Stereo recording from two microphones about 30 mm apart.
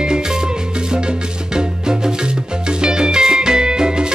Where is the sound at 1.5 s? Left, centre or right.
Right.